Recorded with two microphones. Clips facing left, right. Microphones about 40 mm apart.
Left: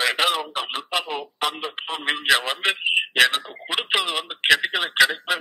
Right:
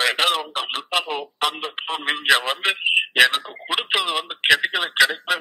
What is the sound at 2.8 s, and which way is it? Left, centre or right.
Speech, centre.